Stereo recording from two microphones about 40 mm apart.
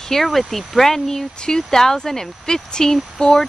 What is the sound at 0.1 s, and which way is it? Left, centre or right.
Speech, centre.